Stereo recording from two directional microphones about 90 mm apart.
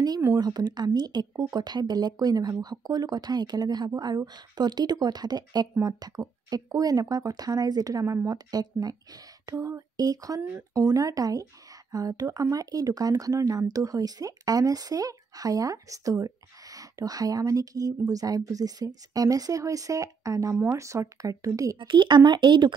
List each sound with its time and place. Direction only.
0.4 s speech: 50° right (ahead or behind)
21.7 s speech: 65° right (ahead or behind)